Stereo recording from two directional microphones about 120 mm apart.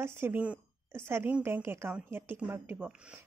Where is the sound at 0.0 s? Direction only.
15° right (ahead or behind).